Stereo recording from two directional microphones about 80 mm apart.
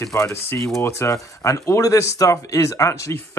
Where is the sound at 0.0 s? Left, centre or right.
Left.